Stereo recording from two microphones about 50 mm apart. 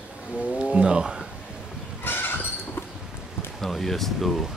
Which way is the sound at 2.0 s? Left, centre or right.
Left.